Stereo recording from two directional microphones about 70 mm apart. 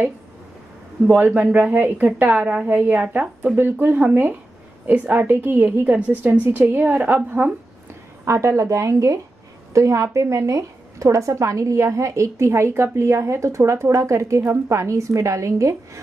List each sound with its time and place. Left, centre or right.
1.2 s a woman's voice: right
8.3 s a woman's voice: right